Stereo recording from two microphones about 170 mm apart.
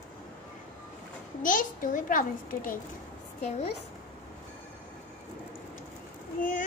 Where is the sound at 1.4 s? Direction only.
50° left (ahead or behind).